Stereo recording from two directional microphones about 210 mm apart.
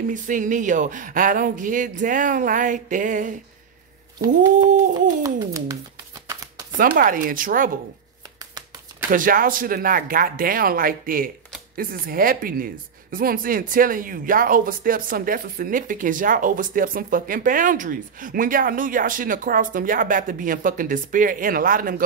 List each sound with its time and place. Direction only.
0.1 s speech: 40° right (ahead or behind)
5.2 s a child's voice: 15° right (ahead or behind)
6.8 s speech: 40° right (ahead or behind)
9.1 s speech: 40° right (ahead or behind)